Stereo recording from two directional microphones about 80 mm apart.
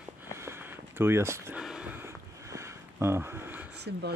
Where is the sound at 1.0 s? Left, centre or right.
Right.